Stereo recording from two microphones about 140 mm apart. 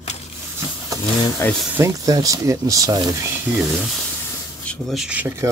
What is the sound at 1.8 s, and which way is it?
Speech, 25° right (ahead or behind).